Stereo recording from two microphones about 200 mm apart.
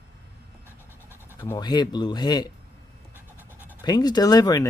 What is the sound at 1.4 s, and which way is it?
Speech, 15° left (ahead or behind).